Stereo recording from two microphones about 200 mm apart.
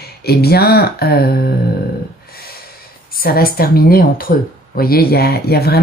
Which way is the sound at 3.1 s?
50° left (ahead or behind).